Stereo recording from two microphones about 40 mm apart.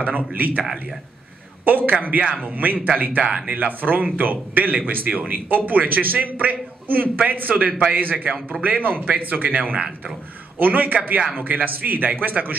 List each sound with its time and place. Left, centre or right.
0.3 s speech: right